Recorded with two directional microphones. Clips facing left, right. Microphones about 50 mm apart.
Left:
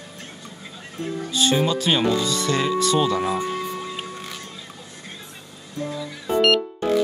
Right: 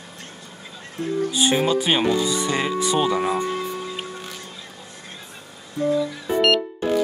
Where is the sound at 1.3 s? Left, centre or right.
Centre.